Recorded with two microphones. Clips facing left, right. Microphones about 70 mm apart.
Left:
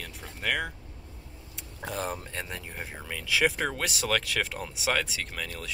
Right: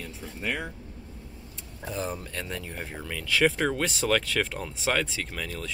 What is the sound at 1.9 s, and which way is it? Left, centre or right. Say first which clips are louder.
Speech: even; left.